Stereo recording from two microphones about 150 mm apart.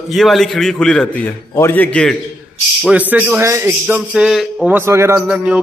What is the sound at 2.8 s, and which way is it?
Speech, 10° right (ahead or behind).